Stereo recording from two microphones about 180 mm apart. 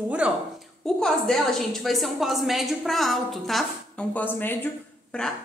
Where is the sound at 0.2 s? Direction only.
5° right (ahead or behind).